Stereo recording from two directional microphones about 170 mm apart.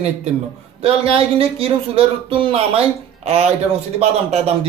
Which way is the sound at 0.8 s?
35° right (ahead or behind).